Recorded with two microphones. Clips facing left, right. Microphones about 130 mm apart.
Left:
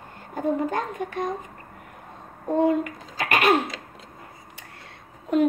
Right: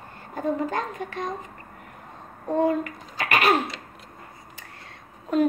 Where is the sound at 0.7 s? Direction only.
50° left (ahead or behind).